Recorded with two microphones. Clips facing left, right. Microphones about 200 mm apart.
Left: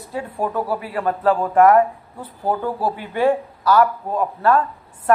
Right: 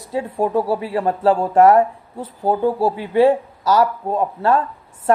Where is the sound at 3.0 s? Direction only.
25° right (ahead or behind).